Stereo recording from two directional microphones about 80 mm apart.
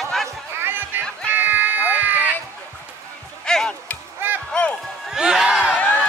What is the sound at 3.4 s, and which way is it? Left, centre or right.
Music, centre.